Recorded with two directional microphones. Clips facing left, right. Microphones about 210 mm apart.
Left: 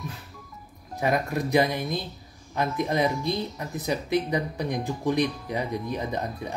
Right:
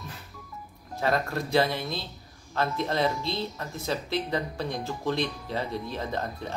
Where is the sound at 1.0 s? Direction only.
15° left (ahead or behind).